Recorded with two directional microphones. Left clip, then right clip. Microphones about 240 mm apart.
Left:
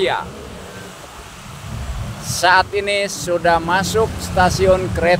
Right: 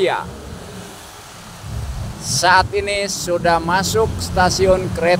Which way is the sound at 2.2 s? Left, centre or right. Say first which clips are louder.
Even; centre.